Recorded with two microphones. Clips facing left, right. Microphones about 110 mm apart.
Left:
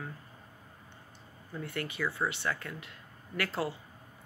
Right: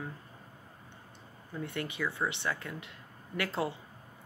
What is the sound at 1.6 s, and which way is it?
Speech, 20° right (ahead or behind).